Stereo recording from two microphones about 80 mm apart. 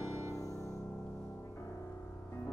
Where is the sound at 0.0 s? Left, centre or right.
Right.